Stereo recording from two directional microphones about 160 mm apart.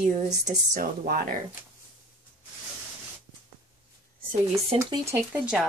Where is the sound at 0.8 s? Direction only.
70° right (ahead or behind).